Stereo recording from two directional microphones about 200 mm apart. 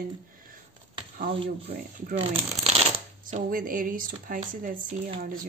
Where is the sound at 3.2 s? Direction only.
45° right (ahead or behind).